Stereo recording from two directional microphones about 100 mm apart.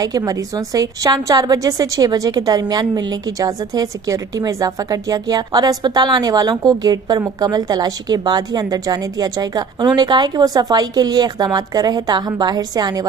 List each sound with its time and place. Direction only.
0.0 s a woman's voice: 40° right (ahead or behind)